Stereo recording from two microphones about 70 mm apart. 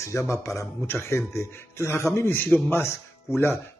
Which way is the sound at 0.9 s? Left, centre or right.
Left.